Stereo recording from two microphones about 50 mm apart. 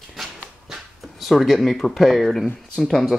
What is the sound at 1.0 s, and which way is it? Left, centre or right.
Speech, centre.